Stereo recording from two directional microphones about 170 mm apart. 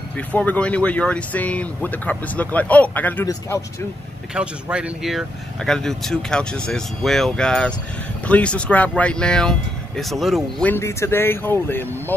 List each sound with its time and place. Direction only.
0.3 s speech: 10° left (ahead or behind)
4.3 s speech: 5° right (ahead or behind)
10.7 s speech: 15° left (ahead or behind)